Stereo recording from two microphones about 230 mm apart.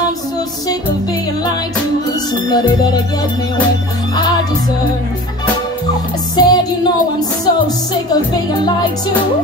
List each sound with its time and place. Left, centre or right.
2.5 s music: centre
6.3 s music: centre